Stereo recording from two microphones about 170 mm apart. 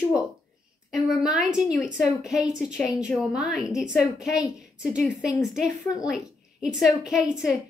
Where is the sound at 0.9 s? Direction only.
Centre (ahead or behind).